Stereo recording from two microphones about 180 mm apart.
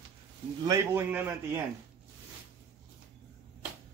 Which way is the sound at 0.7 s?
15° right (ahead or behind).